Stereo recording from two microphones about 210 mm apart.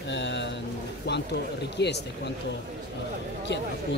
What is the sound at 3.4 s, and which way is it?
Speech, 55° left (ahead or behind).